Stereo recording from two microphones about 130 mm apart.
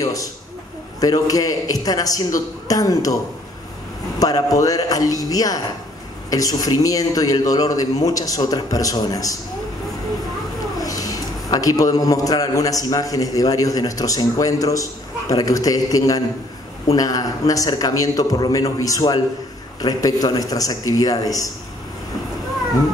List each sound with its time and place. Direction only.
0.0 s a man's voice: 25° left (ahead or behind)
4.2 s a man's voice: 30° left (ahead or behind)
10.8 s a man's voice: 25° left (ahead or behind)